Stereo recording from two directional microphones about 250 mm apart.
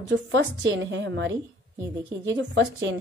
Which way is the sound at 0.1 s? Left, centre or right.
Right.